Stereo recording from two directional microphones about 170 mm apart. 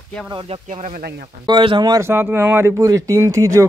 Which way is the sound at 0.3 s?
35° right (ahead or behind).